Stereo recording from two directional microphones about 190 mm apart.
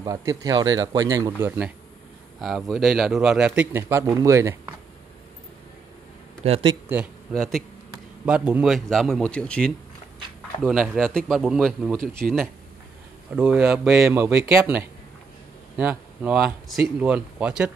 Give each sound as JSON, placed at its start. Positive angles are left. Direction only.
{"t": 0.0, "sound": "speech", "side_deg": -20}
{"t": 2.4, "sound": "a man's voice", "side_deg": 0}
{"t": 6.4, "sound": "speech", "side_deg": -30}
{"t": 6.9, "sound": "a man's voice", "side_deg": -5}